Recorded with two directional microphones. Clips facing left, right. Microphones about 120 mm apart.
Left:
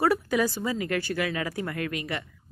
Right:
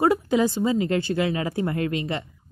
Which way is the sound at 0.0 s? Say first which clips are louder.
Right 4 dB; 20° right (ahead or behind).